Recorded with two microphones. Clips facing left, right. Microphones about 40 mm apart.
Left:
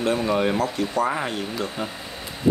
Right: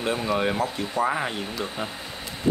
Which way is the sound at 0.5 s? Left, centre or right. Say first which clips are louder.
Left 3 dB; centre.